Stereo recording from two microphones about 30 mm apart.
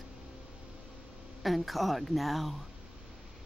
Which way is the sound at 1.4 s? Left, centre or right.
Centre.